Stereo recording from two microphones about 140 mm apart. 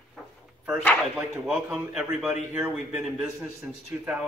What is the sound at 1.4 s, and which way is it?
A man's voice, 10° right (ahead or behind).